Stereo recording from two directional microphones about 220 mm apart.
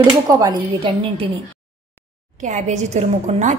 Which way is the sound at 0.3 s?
15° right (ahead or behind).